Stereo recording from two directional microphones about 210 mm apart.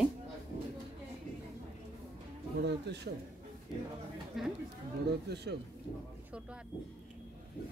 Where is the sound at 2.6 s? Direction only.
55° right (ahead or behind).